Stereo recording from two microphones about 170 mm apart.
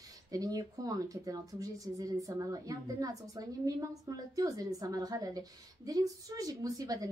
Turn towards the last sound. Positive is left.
turn(degrees=-20)  # may be behind; listen again after turning